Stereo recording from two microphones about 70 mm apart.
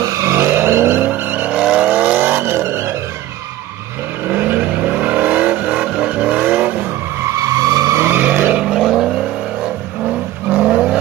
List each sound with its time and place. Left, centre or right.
0.0 s vehicle: right
1.6 s vehicle: centre; by 3.0 s right
4.3 s vehicle: right
7.2 s vehicle: right
8.2 s vehicle: right
8.5 s vehicle: centre
10.7 s vehicle: centre